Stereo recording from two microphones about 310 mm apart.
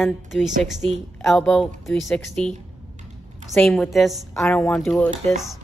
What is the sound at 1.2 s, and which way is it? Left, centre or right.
A woman's voice, centre.